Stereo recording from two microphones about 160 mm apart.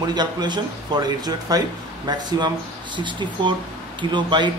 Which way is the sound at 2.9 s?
30° right (ahead or behind).